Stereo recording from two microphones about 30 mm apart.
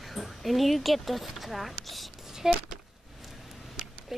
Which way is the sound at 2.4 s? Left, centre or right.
Centre.